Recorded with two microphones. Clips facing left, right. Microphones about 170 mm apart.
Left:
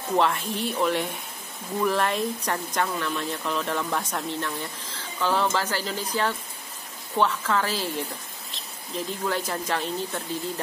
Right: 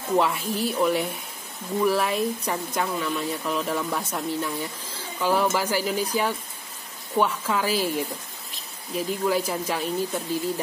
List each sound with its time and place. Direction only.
0.2 s speech: 5° right (ahead or behind)
8.9 s speech: 10° right (ahead or behind)